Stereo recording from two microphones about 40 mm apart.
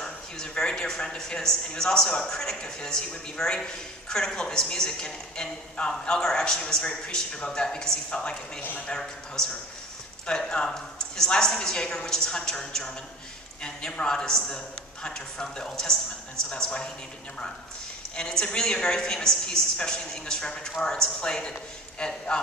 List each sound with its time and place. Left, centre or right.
0.0 s a woman's voice: centre
18.1 s a woman's voice: left